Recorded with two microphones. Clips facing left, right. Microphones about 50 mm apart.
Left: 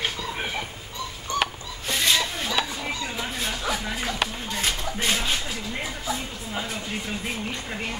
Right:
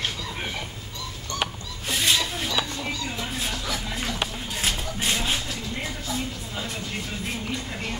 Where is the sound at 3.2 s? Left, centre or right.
Centre.